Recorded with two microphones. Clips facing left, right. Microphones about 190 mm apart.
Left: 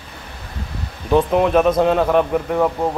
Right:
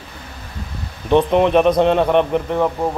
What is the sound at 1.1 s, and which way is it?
A man's voice, 5° left (ahead or behind).